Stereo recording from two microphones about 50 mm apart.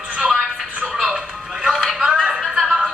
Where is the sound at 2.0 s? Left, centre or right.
Centre.